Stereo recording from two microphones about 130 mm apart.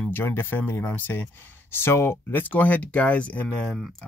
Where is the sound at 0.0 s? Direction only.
15° left (ahead or behind).